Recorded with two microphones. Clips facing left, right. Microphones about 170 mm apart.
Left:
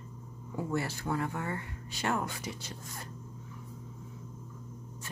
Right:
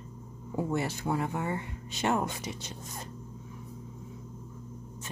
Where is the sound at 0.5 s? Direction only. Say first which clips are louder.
Right 3 dB; 20° right (ahead or behind).